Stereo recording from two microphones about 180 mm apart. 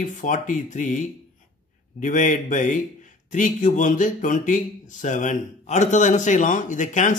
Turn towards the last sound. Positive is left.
turn(degrees=45)  # may be behind; listen again after turning